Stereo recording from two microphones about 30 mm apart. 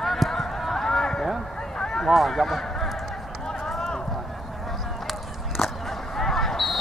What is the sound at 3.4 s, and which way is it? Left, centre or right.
Run, left.